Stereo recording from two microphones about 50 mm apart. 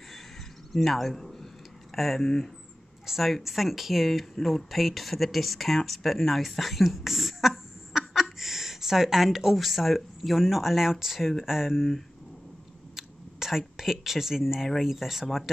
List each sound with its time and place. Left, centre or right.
0.7 s speech: centre
3.1 s speech: centre